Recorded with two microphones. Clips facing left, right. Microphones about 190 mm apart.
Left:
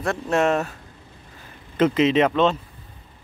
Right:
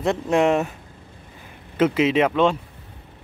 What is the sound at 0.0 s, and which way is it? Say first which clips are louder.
Speech: right 2 dB; 15° right (ahead or behind).